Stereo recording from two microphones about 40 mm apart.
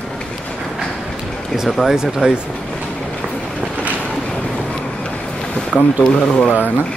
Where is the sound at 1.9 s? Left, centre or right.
Centre.